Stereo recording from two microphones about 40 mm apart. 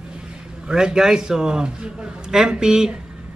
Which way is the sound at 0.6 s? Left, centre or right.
Centre.